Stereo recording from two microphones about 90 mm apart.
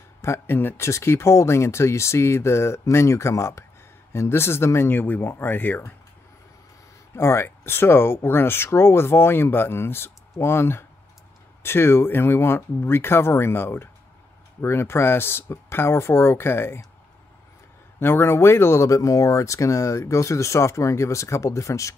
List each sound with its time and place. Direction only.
0.2 s speech: 25° left (ahead or behind)
7.2 s speech: 30° left (ahead or behind)
17.9 s speech: 25° left (ahead or behind)